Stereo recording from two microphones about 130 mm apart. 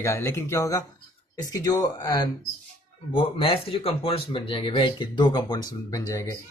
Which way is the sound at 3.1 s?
45° left (ahead or behind).